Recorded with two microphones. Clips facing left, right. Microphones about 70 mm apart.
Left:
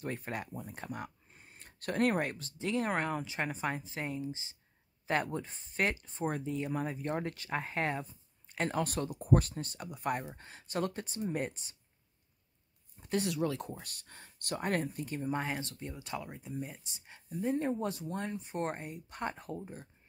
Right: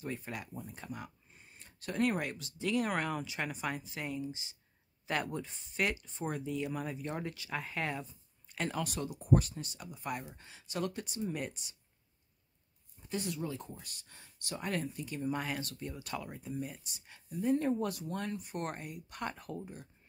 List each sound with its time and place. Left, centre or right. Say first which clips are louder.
0.0 s speech: left 2 dB; left
13.0 s speech: left 5 dB; left
13.7 s speech: left 3 dB; left; by 16.8 s centre
16.8 s speech: left 1 dB; left